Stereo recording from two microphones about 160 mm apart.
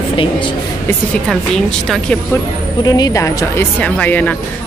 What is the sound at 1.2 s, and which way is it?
A woman's voice, 5° left (ahead or behind).